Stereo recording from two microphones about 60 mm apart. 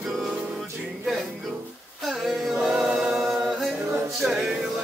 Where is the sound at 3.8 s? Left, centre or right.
Right.